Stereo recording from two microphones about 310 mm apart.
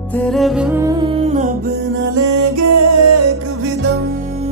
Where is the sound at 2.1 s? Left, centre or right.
Right.